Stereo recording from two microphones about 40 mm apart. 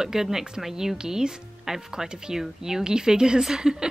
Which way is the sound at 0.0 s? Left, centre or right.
Centre.